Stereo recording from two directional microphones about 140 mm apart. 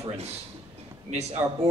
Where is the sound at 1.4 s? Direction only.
10° right (ahead or behind).